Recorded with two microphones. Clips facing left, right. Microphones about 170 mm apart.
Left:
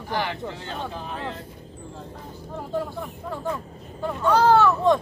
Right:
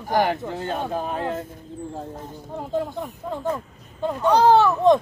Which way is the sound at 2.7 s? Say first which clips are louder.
Right 3 dB; 20° right (ahead or behind).